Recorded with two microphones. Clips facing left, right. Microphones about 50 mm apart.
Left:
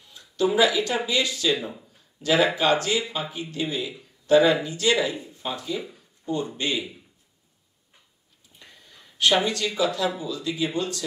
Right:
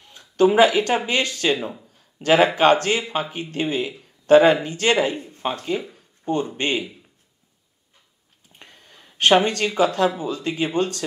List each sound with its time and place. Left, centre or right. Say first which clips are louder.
0.0 s speech: right 7 dB; right
5.9 s a sound: right 5 dB; right
6.5 s speech: right 4 dB; right
8.5 s speech: right 3 dB; right